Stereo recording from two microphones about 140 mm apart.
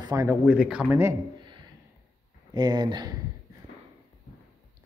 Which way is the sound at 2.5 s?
30° right (ahead or behind).